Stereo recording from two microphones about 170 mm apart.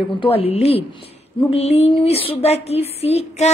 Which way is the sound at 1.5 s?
35° left (ahead or behind).